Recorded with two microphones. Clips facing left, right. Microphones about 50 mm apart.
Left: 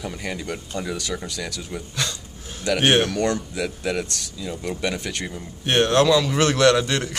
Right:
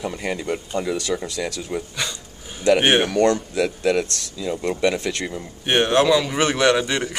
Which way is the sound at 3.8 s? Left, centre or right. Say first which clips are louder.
Right 5 dB; right.